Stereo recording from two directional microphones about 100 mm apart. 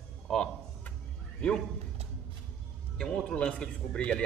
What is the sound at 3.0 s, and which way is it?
Speech, 10° left (ahead or behind).